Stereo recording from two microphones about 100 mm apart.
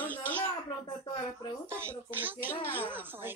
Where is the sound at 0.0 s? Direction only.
20° left (ahead or behind).